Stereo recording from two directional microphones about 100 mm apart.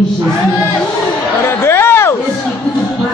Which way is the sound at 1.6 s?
25° left (ahead or behind).